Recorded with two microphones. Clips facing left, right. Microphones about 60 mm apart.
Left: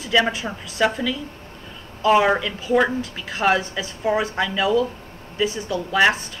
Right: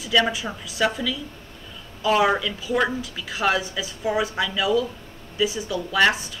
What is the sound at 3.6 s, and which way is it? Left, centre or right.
Speech, left.